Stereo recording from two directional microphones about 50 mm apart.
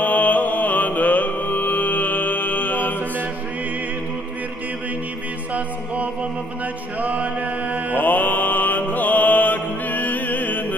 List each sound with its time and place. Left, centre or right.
0.0 s music: left
7.0 s chant: right
8.0 s mantra: left